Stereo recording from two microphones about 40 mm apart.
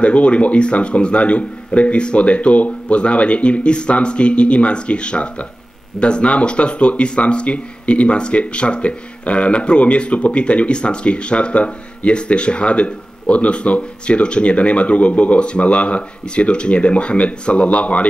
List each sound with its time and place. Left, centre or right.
0.0 s speech: left